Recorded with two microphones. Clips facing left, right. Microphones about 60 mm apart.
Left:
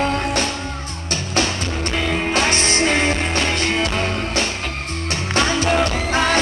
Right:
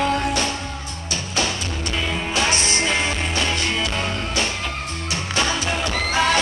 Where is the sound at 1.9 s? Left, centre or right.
Left.